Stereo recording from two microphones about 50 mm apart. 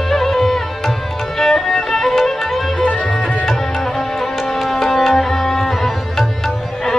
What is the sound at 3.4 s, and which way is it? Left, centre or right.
Music, centre.